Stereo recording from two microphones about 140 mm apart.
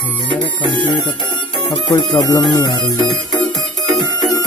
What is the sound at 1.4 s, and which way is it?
Speech, 35° left (ahead or behind).